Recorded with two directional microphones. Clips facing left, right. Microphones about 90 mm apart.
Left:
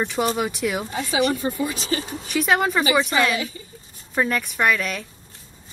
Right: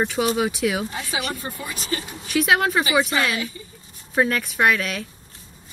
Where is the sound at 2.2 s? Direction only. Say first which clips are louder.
Right 1 dB; centre (ahead or behind).